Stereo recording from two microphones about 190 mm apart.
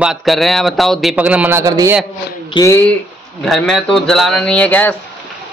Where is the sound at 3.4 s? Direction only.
Centre (ahead or behind).